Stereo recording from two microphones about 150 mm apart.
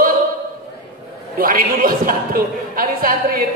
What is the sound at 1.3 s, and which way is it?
A man's voice, 70° right (ahead or behind).